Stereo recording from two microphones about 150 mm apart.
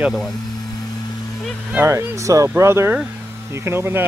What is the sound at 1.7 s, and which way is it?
Speech, 15° right (ahead or behind).